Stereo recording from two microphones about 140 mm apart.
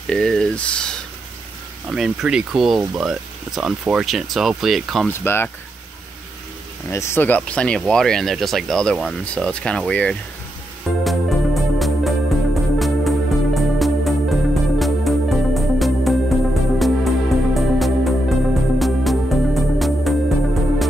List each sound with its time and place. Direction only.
0.1 s a sound: 5° left (ahead or behind)
1.9 s speech: 5° right (ahead or behind)
5.0 s speech: 15° left (ahead or behind)
6.9 s speech: 20° left (ahead or behind)
11.1 s music: centre (ahead or behind)